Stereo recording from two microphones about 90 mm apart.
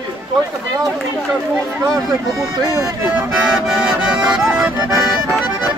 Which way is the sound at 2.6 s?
40° right (ahead or behind).